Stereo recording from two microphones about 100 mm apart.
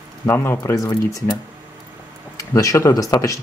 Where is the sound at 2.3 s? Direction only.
35° left (ahead or behind).